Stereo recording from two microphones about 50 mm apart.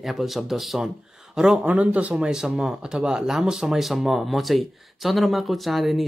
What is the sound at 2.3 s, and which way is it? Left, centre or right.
Speech, centre.